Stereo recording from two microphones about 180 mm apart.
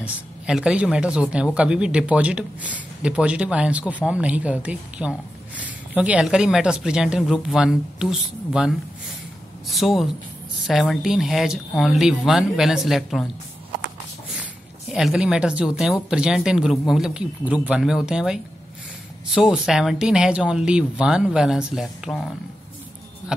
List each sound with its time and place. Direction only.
0.0 s speech: 5° right (ahead or behind)
14.3 s speech: 5° right (ahead or behind)